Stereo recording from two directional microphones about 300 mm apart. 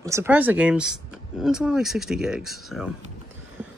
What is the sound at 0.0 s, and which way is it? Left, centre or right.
Speech, centre.